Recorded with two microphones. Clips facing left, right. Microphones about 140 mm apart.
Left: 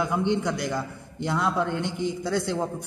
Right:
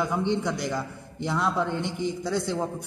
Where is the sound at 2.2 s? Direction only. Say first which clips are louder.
Left 1 dB; centre (ahead or behind).